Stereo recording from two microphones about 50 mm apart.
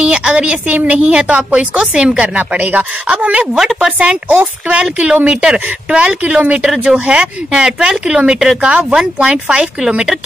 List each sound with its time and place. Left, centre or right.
0.0 s a woman's voice: centre
3.5 s speech: centre
4.3 s a woman's voice: right
6.6 s a woman's voice: centre